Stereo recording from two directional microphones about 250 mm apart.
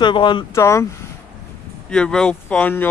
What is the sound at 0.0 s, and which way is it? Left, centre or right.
Speech, centre.